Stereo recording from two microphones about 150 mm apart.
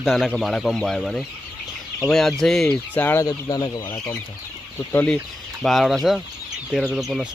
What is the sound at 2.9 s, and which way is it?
Speech, 15° left (ahead or behind).